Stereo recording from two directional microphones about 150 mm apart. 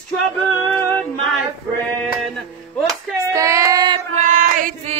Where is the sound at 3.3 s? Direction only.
20° right (ahead or behind).